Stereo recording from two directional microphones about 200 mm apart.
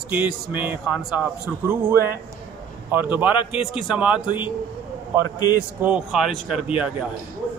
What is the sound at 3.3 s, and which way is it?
Speech, 25° left (ahead or behind).